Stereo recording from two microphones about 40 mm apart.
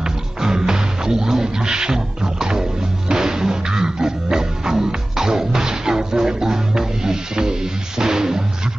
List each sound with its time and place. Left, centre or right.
0.4 s music: centre
3.1 s music: centre